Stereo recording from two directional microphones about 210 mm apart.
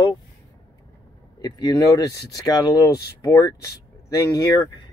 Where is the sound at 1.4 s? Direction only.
20° left (ahead or behind).